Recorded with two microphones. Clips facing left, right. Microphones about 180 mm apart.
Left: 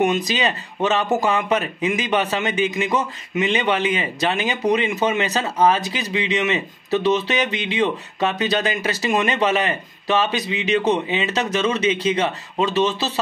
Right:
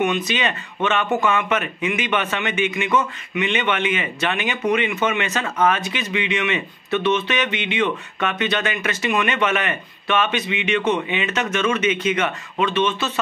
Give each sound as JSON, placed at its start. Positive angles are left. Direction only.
{"t": 0.0, "sound": "a man's voice", "side_deg": 40}